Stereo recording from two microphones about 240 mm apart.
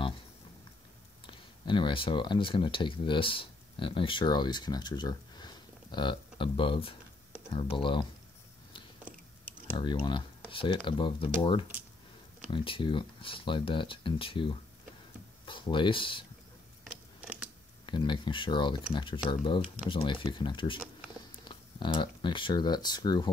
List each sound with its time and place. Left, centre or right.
1.2 s speech: centre
9.8 s speech: centre
16.8 s a sound: centre
17.8 s speech: centre